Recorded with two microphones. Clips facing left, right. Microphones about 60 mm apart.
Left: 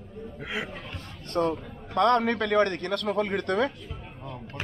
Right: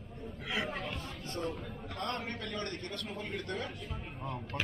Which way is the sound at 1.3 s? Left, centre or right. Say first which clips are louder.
Left 12 dB; left.